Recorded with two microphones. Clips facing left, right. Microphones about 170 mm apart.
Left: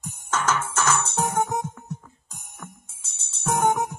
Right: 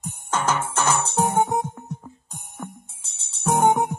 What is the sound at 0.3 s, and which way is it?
Music, 30° right (ahead or behind).